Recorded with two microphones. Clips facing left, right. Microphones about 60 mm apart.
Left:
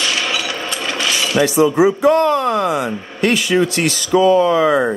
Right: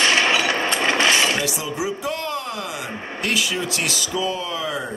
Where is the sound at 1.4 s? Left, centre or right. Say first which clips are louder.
Left 13 dB; left.